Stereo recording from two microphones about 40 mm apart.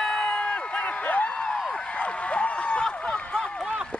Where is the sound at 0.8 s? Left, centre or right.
Left.